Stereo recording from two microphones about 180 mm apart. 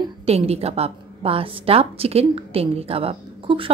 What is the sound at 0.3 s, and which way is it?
A woman's voice, 35° right (ahead or behind).